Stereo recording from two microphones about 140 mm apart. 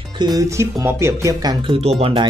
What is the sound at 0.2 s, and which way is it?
Speech, 25° right (ahead or behind).